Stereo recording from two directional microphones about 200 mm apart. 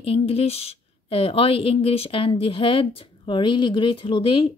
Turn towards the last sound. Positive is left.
turn(degrees=25)  # may be behind; listen again after turning